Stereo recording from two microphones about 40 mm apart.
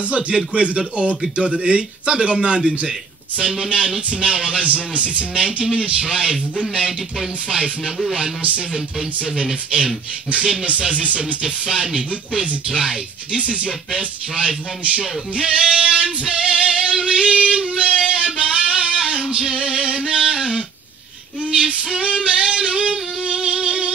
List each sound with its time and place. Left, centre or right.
0.5 s music: right
1.3 s a man's voice: right
4.6 s music: right
5.4 s a man's voice: right
7.4 s a man's voice: right
8.4 s music: right
8.7 s a man's voice: right
10.4 s music: right
11.4 s a man's voice: right
13.3 s a man's voice: right
15.3 s music: right
19.2 s male singing: right
22.0 s music: right